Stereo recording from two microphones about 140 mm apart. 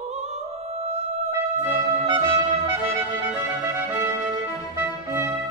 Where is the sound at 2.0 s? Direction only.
20° right (ahead or behind).